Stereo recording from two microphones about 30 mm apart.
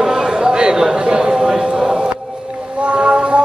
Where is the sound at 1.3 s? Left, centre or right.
Centre.